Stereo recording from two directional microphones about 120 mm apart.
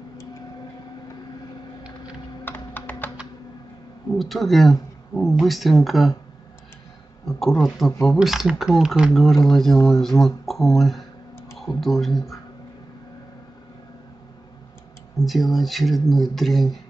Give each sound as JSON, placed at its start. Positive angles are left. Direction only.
{"t": 2.4, "sound": "typing", "side_deg": 15}
{"t": 4.1, "sound": "speech", "side_deg": 0}
{"t": 7.2, "sound": "speech", "side_deg": 0}
{"t": 15.2, "sound": "speech", "side_deg": 0}